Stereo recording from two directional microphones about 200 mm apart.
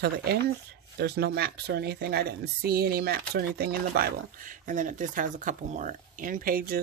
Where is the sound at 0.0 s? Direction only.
55° right (ahead or behind).